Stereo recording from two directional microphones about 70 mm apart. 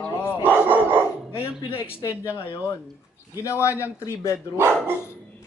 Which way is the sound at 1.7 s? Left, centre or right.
Left.